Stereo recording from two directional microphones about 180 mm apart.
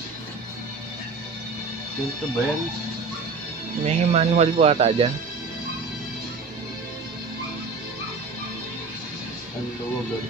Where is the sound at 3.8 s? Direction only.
35° right (ahead or behind).